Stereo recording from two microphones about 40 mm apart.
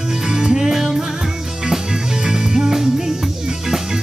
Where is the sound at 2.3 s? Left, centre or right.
Centre.